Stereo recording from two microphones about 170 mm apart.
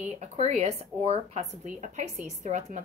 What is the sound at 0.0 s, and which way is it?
Speech, 40° right (ahead or behind).